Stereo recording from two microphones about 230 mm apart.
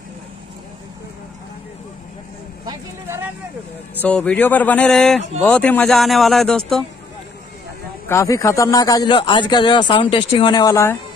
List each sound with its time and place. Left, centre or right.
2.6 s vehicle: centre
4.0 s speech: centre
8.1 s a man's voice: centre